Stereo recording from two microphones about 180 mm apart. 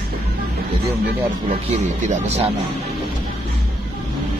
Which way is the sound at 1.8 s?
40° right (ahead or behind).